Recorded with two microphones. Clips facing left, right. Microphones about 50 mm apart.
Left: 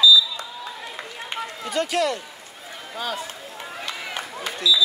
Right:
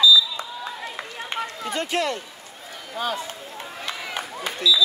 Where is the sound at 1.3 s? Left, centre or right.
Right.